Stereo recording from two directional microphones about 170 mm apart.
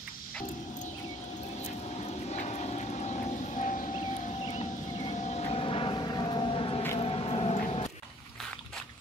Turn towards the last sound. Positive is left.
turn(degrees=35)  # may be behind; listen again after turning